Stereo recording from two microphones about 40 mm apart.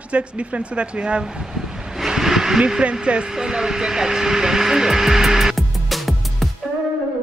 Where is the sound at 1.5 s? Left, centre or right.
Centre.